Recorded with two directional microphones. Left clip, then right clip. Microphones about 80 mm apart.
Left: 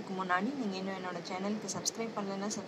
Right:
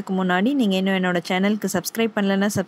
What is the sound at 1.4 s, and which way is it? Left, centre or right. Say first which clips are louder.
Speech: right 13 dB; right.